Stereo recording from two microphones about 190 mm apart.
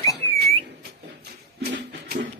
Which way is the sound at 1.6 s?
60° right (ahead or behind).